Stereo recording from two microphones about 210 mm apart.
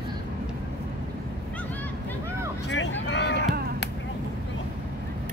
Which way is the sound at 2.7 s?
60° left (ahead or behind).